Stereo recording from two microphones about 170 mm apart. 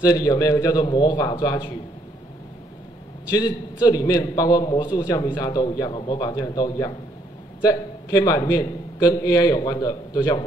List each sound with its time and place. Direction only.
0.0 s a man's voice: 25° left (ahead or behind)
3.3 s a man's voice: 20° left (ahead or behind)